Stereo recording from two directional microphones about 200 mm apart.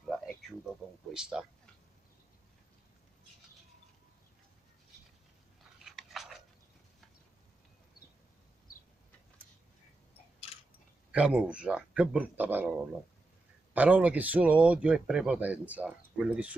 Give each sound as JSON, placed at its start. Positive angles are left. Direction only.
{"t": 0.0, "sound": "a sound", "side_deg": 0}
{"t": 1.1, "sound": "speech", "side_deg": -5}
{"t": 5.9, "sound": "biting", "side_deg": 0}
{"t": 10.5, "sound": "a sound", "side_deg": 25}
{"t": 11.1, "sound": "speech", "side_deg": -5}
{"t": 13.7, "sound": "speech", "side_deg": -5}